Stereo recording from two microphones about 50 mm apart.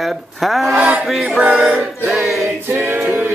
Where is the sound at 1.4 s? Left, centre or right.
Right.